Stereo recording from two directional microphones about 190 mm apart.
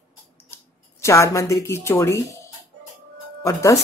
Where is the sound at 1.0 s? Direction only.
15° left (ahead or behind).